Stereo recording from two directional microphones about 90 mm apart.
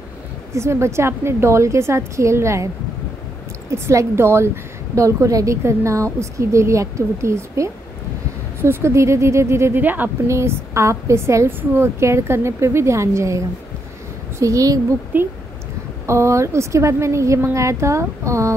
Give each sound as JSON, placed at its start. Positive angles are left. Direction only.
{"t": 0.5, "sound": "a woman's voice", "side_deg": -30}
{"t": 3.7, "sound": "a woman's voice", "side_deg": -30}
{"t": 10.2, "sound": "a woman's voice", "side_deg": -30}
{"t": 14.4, "sound": "a woman's voice", "side_deg": -40}
{"t": 15.1, "sound": "a woman's voice", "side_deg": -20}
{"t": 16.1, "sound": "a woman's voice", "side_deg": -35}